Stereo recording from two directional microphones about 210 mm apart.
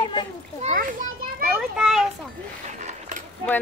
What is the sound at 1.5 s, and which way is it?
Speech, centre (ahead or behind).